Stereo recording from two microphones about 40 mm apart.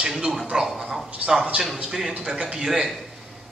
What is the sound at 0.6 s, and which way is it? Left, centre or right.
Speech, centre.